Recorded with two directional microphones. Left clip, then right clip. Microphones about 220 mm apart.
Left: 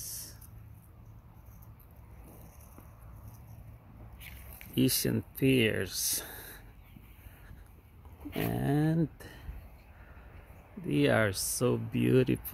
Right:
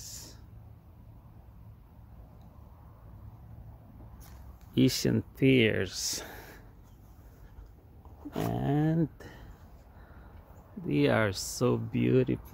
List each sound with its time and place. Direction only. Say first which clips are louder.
4.7 s speech: right 3 dB; 15° right (ahead or behind)
8.3 s a sound: right 1 dB; centre (ahead or behind)
10.9 s speech: even; 5° right (ahead or behind)